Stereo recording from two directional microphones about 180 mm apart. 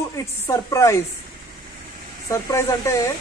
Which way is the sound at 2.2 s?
15° left (ahead or behind).